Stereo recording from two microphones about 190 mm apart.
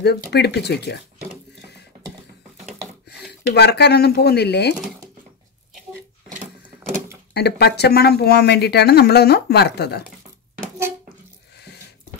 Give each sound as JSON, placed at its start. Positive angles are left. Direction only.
{"t": 0.0, "sound": "speech", "side_deg": 60}
{"t": 3.1, "sound": "speech", "side_deg": 60}
{"t": 7.3, "sound": "speech", "side_deg": 60}
{"t": 11.5, "sound": "a sound", "side_deg": 60}